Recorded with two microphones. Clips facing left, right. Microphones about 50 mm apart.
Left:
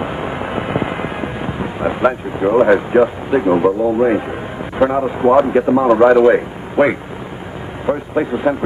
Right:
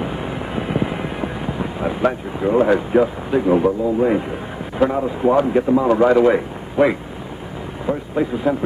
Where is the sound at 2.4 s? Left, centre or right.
Centre.